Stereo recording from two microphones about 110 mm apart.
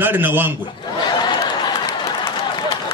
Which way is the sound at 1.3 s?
40° left (ahead or behind).